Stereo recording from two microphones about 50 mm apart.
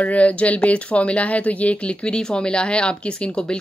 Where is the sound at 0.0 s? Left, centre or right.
Left.